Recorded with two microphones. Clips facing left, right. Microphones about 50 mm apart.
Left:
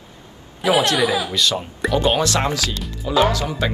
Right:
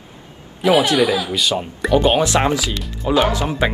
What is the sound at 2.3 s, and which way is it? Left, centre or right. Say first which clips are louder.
Speech: right 4 dB; right.